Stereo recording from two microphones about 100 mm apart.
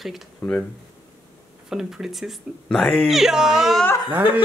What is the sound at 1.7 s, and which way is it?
Speech, 5° right (ahead or behind).